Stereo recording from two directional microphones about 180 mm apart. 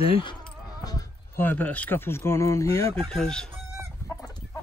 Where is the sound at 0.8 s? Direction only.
20° left (ahead or behind).